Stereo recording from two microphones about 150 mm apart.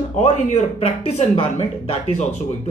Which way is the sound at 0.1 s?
50° left (ahead or behind).